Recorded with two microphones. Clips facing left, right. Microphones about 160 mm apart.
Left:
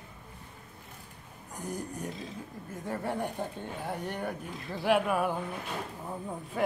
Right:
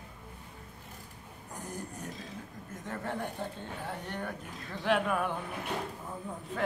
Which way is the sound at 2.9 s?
10° left (ahead or behind).